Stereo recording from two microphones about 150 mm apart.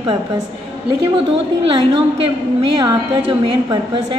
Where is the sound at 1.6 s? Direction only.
35° right (ahead or behind).